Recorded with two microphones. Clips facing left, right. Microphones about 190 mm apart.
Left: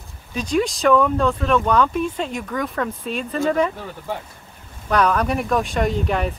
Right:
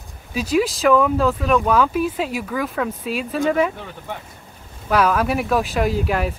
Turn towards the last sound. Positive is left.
turn(degrees=-5)  # may be behind; listen again after turning